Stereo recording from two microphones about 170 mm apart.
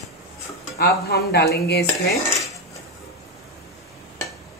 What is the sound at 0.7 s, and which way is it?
Speech, 70° left (ahead or behind).